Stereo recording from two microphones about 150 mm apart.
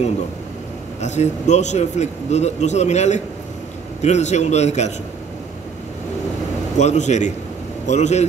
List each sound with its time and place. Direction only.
1.0 s a man's voice: 50° left (ahead or behind)
6.8 s a man's voice: 50° left (ahead or behind)